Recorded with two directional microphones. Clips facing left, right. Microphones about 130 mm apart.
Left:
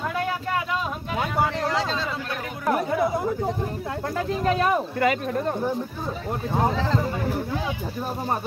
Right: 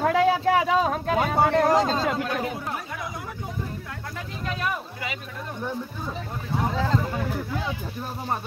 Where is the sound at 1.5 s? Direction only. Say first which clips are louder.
Right 5 dB; 50° right (ahead or behind).